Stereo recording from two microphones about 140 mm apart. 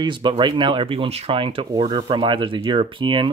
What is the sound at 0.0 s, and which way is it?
Speech, 35° right (ahead or behind).